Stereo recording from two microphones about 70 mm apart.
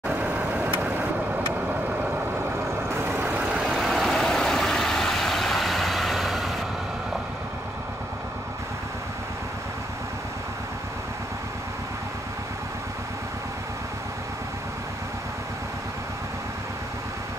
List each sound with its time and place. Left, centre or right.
0.2 s vehicle: right
2.9 s vehicle: right
3.3 s vehicle: centre